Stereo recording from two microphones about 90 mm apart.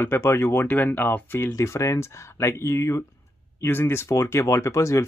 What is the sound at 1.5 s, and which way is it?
Speech, 35° left (ahead or behind).